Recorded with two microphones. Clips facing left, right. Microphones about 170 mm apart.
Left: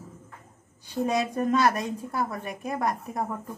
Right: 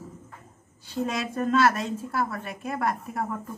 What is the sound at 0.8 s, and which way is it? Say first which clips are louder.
A woman's voice: left 3 dB; 15° left (ahead or behind).